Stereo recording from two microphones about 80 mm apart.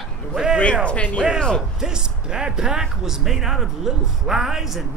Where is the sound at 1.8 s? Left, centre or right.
Centre.